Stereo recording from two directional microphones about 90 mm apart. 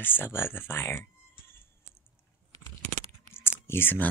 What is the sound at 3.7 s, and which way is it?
Speech, 25° left (ahead or behind).